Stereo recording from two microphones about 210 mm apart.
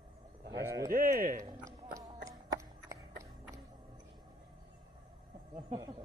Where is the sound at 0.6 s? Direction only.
15° right (ahead or behind).